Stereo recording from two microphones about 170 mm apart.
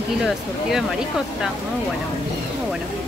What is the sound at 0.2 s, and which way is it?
Speech, centre (ahead or behind).